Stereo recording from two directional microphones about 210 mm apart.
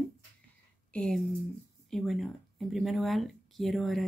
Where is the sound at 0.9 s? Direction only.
5° left (ahead or behind).